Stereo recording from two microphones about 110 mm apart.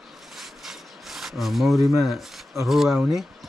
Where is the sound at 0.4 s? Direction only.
Centre (ahead or behind).